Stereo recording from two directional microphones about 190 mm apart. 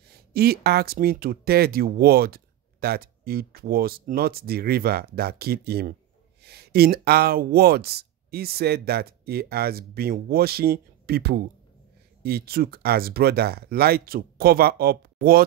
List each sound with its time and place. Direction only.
0.1 s speech: 55° right (ahead or behind)